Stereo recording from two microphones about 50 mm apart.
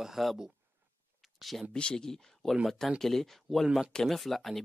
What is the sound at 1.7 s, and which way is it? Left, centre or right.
Speech, centre.